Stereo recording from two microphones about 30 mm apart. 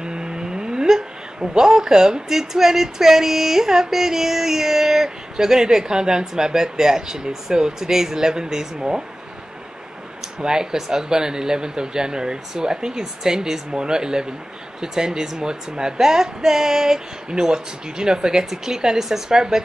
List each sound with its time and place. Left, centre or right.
0.0 s humming: right
1.5 s speech: centre
10.4 s speech: right